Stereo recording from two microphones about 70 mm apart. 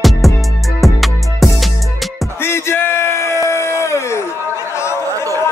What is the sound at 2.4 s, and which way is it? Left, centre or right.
Bellow, left.